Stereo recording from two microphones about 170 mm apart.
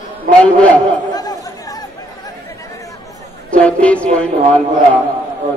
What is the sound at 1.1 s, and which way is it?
Chatter, 20° left (ahead or behind).